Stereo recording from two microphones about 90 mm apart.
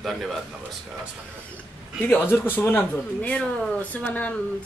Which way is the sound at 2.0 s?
20° left (ahead or behind).